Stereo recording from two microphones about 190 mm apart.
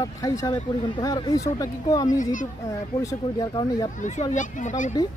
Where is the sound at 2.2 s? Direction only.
40° left (ahead or behind).